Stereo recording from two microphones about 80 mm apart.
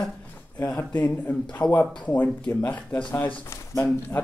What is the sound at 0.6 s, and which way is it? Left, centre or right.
A man's voice, left.